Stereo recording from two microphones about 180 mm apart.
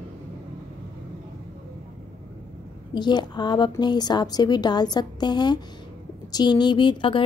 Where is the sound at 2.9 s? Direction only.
25° left (ahead or behind).